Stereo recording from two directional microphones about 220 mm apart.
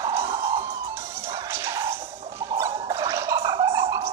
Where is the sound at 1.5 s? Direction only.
10° right (ahead or behind).